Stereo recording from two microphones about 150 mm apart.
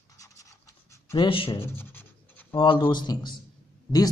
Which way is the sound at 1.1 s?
35° left (ahead or behind).